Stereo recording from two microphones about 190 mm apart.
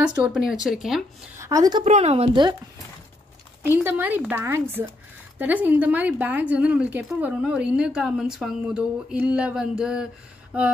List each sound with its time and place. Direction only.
0.2 s speech: 5° right (ahead or behind)
1.4 s a woman's voice: 20° right (ahead or behind)
1.9 s a woman's voice: 35° right (ahead or behind)
3.6 s a woman's voice: 10° right (ahead or behind)